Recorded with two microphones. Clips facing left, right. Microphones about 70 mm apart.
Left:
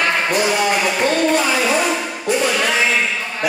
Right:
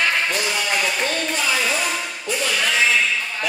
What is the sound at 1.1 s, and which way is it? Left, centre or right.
Music, left.